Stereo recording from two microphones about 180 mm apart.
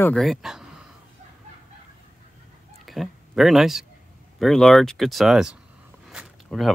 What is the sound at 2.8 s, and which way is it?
Speech, centre (ahead or behind).